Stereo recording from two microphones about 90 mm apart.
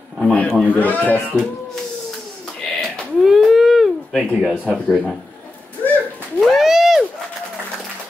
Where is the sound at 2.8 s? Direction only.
Centre (ahead or behind).